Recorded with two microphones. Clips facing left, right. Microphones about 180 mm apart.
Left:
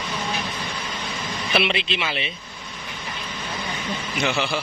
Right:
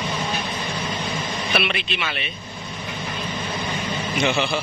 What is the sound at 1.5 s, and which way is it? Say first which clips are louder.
Speech: left 3 dB; 25° left (ahead or behind).